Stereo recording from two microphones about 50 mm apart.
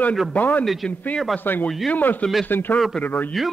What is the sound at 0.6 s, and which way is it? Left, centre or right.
Speech, centre.